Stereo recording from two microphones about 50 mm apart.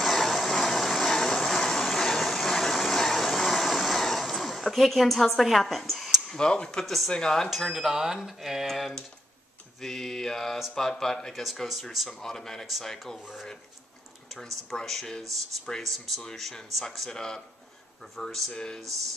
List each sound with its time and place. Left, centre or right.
0.0 s vehicle: centre
6.3 s speech: centre
7.4 s speech: centre
11.6 s speech: centre
12.1 s speech: centre
13.0 s speech: centre
14.8 s speech: centre
18.5 s speech: centre